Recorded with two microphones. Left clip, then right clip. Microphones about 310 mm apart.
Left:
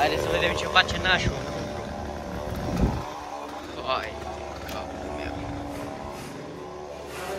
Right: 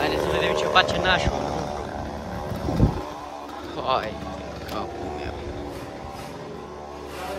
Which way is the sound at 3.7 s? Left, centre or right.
Centre.